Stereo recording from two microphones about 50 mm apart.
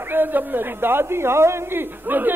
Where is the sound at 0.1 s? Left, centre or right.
Right.